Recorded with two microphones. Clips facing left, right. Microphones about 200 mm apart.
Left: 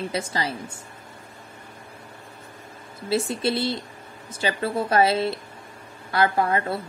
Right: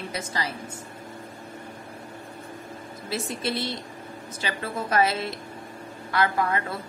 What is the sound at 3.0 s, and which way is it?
A woman's voice, 30° left (ahead or behind).